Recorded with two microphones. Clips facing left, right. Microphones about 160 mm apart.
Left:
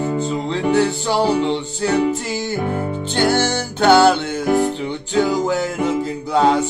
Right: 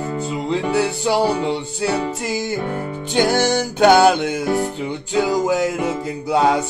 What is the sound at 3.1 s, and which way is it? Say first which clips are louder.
Music: right 1 dB; 15° right (ahead or behind).